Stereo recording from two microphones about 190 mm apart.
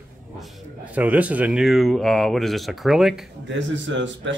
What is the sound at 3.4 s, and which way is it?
Speech, 70° right (ahead or behind).